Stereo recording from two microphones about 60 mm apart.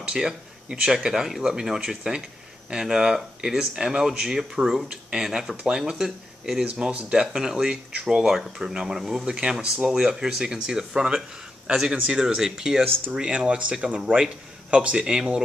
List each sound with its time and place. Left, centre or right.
0.0 s speech: centre
6.6 s a man's voice: centre